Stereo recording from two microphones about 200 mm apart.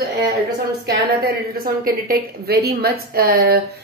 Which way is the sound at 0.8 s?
45° right (ahead or behind).